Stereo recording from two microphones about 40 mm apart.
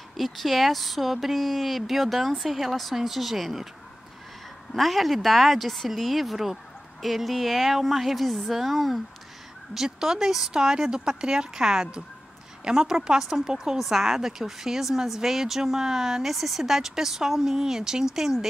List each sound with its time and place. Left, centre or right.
0.2 s speech: centre
4.7 s speech: centre